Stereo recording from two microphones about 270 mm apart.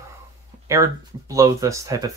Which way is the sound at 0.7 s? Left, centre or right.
Centre.